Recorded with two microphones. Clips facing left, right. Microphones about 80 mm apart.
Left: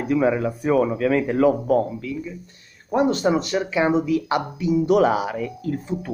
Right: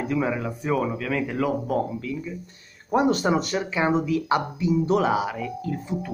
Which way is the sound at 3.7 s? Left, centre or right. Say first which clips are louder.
Left 3 dB; centre.